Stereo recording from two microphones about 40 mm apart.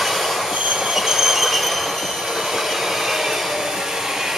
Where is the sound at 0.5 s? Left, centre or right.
Centre.